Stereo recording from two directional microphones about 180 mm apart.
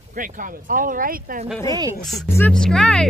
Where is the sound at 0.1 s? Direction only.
50° right (ahead or behind).